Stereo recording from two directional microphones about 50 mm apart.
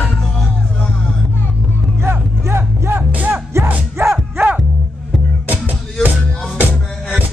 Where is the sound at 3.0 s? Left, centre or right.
Right.